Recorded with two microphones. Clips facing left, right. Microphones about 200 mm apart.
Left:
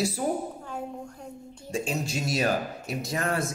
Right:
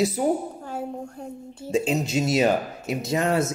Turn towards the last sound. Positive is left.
turn(degrees=-25)  # may be behind; listen again after turning